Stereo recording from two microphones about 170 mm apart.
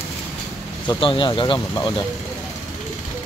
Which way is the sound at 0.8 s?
30° left (ahead or behind).